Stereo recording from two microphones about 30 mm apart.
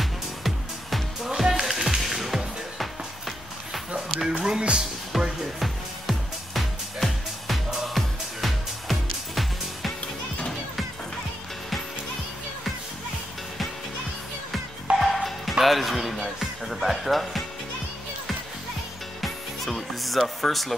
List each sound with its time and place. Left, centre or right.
0.0 s music: centre
1.3 s music: centre
1.6 s music: centre
4.2 s music: centre
4.6 s music: right
5.1 s music: centre
14.9 s music: right
15.6 s music: centre
19.9 s music: centre